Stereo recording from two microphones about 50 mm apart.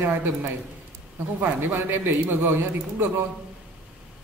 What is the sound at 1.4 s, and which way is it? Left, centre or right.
A man's voice, right.